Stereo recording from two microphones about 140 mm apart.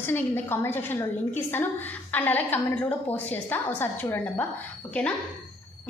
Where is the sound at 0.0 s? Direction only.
15° left (ahead or behind).